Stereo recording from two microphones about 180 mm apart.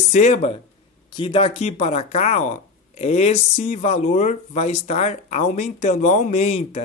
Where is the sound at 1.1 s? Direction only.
30° left (ahead or behind).